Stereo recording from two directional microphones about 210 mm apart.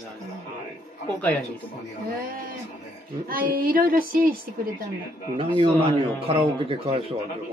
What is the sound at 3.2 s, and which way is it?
A woman's voice, 45° right (ahead or behind).